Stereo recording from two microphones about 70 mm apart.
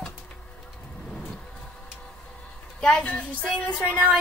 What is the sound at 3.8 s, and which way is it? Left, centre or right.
Speech, centre.